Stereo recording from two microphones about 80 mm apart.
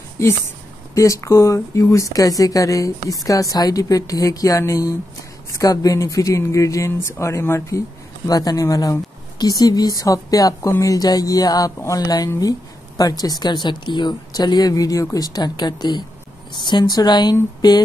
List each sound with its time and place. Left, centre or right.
0.9 s speech: left
8.3 s speech: left